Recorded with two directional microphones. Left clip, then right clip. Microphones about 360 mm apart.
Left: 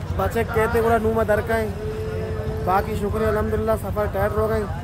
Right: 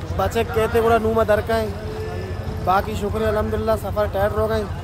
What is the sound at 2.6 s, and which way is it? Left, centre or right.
A man's voice, centre.